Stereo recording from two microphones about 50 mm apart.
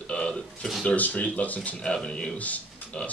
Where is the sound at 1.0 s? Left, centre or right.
Left.